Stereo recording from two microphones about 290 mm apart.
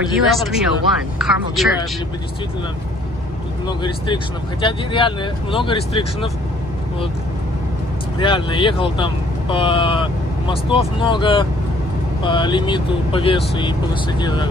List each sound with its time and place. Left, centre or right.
0.3 s speech: centre
3.6 s speech: centre
8.2 s speech: centre